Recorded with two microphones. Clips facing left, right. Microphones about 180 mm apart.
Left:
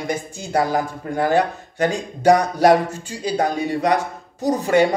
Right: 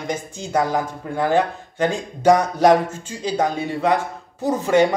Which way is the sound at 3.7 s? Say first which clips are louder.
Left 1 dB; 40° left (ahead or behind).